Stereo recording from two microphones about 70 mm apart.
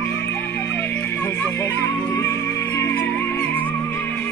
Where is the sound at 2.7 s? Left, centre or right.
Left.